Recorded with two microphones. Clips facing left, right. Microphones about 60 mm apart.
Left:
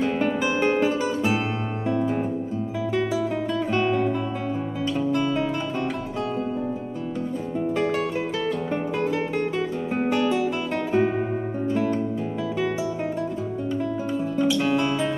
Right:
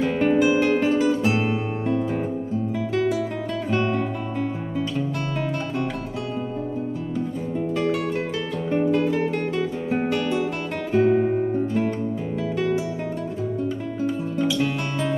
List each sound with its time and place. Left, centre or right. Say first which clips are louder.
0.2 s music: right 4 dB; centre
3.8 s music: left 2 dB; centre
7.6 s music: even; centre
11.0 s guitar: right 5 dB; centre
14.0 s guitar: right 2 dB; centre